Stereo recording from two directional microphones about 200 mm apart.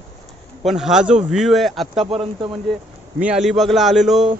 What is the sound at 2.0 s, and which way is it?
Speech, 30° right (ahead or behind).